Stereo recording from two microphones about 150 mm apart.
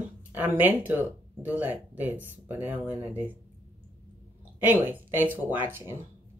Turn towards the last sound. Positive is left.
turn(degrees=-15)  # may be behind; listen again after turning